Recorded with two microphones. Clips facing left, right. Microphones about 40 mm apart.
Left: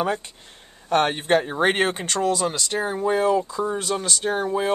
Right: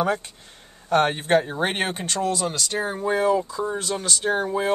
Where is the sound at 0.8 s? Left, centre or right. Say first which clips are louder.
Even; left.